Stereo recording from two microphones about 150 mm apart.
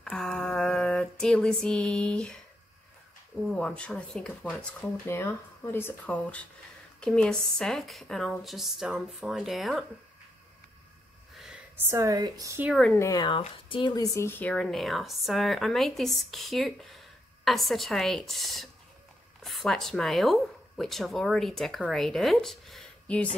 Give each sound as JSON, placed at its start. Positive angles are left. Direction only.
{"t": 0.0, "sound": "a sound", "side_deg": 5}
{"t": 3.4, "sound": "speech", "side_deg": 5}
{"t": 5.0, "sound": "speech", "side_deg": 15}
{"t": 11.3, "sound": "a sound", "side_deg": 0}
{"t": 11.7, "sound": "a woman's voice", "side_deg": -15}
{"t": 12.6, "sound": "speech", "side_deg": 0}
{"t": 12.9, "sound": "speech", "side_deg": 20}